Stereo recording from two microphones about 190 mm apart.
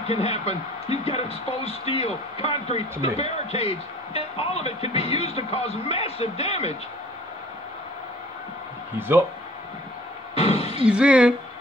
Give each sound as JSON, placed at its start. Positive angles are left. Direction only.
{"t": 0.1, "sound": "speech", "side_deg": 30}
{"t": 8.9, "sound": "speech", "side_deg": -10}
{"t": 10.3, "sound": "a sound", "side_deg": 30}
{"t": 10.8, "sound": "speech", "side_deg": -5}